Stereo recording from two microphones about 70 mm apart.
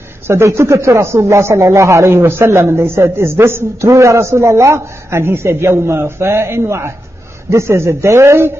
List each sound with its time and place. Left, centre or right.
0.3 s speech: right